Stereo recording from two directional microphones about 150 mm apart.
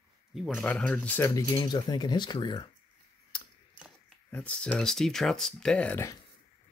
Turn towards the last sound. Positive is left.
turn(degrees=5)  # may be behind; listen again after turning